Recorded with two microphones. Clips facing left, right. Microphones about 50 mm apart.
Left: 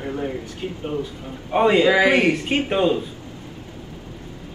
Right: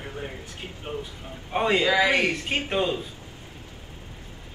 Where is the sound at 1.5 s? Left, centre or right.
Centre.